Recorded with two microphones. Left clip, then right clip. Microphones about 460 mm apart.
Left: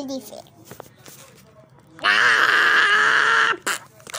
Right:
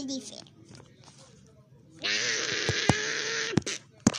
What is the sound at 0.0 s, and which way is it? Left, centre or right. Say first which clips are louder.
Speech: left 6 dB; right.